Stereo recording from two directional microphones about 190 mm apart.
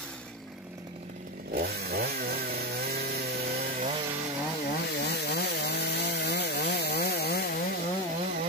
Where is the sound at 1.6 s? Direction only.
55° right (ahead or behind).